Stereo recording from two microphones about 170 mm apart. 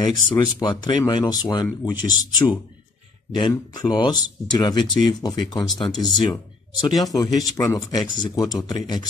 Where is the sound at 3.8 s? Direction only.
25° left (ahead or behind).